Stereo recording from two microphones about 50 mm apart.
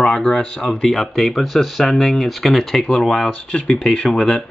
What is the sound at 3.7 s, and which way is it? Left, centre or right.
Speech, centre.